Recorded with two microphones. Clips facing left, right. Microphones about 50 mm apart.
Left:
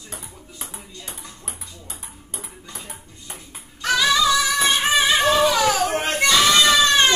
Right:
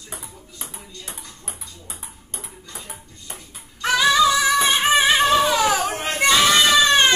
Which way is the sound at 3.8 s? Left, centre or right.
Right.